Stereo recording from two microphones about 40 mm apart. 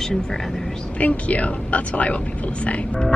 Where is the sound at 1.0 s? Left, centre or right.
Left.